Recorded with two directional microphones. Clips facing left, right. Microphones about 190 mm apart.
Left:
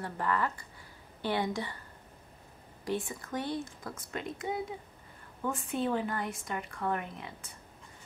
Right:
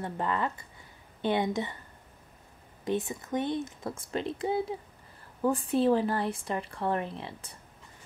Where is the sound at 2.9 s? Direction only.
20° right (ahead or behind).